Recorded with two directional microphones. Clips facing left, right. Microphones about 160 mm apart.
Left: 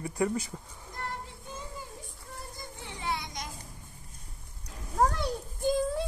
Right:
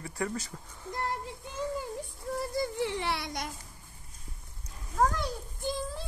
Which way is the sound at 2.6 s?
75° right (ahead or behind).